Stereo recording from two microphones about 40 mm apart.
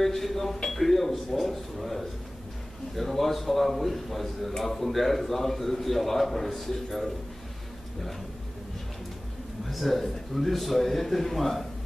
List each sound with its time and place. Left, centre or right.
0.0 s speech: centre
9.7 s speech: centre